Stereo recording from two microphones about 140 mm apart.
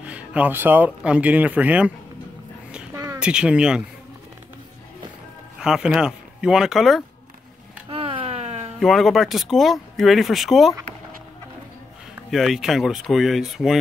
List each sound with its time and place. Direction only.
0.0 s speech: 10° right (ahead or behind)
2.9 s a sound: 20° right (ahead or behind)
3.2 s speech: 5° right (ahead or behind)
5.6 s speech: 5° right (ahead or behind)
7.9 s a sound: 45° right (ahead or behind)
8.7 s speech: centre (ahead or behind)
12.3 s speech: centre (ahead or behind)